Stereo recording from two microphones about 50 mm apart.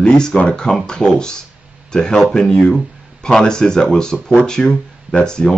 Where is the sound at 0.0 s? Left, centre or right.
Left.